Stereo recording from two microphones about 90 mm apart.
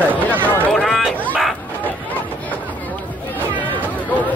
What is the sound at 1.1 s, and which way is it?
Chicken, 15° left (ahead or behind).